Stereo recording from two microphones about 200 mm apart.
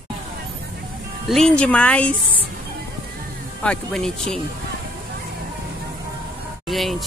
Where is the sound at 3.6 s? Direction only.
5° left (ahead or behind).